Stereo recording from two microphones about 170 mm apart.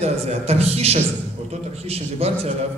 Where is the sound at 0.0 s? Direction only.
40° right (ahead or behind).